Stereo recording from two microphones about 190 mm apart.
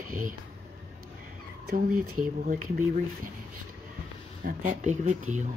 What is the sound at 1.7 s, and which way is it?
Speech, 45° right (ahead or behind).